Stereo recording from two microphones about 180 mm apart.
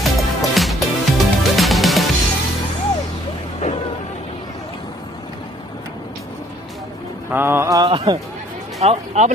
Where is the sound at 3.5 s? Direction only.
35° left (ahead or behind).